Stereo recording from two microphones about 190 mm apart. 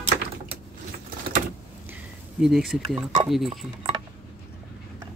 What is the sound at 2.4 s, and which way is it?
Speech, centre (ahead or behind).